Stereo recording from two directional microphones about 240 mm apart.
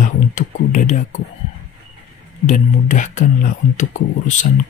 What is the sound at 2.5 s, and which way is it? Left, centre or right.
Speech, left.